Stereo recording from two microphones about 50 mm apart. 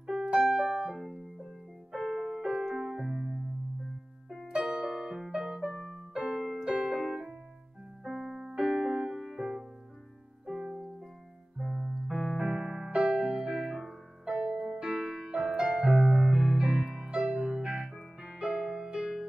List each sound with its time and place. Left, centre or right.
0.0 s music: centre
2.4 s music: centre
4.5 s music: centre
6.3 s keyboard: centre
6.6 s music: centre
7.0 s keyboard: centre
8.0 s music: centre
11.5 s keyboard: centre
12.9 s music: centre
14.4 s music: right
14.7 s piano: centre
17.1 s music: centre